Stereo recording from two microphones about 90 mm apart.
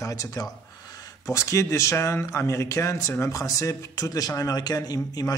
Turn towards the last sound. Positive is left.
turn(degrees=45)  # may be behind; listen again after turning